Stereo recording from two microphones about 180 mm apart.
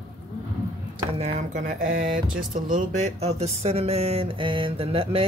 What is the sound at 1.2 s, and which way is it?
Speech, 40° right (ahead or behind).